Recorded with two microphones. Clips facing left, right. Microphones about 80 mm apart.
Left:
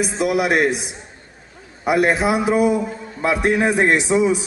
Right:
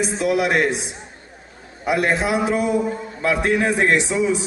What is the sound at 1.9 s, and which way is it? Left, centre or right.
A man's voice, centre.